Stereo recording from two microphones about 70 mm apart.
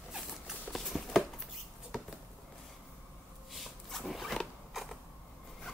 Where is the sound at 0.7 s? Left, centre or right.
Centre.